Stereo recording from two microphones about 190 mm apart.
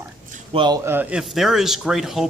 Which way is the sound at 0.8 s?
10° right (ahead or behind).